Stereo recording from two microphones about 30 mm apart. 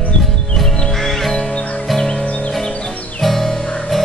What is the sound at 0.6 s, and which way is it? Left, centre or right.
Music, centre.